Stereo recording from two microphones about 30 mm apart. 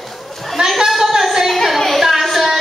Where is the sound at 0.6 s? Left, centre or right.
Right.